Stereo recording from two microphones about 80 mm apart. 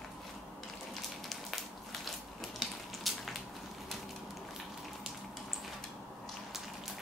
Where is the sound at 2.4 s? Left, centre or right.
Centre.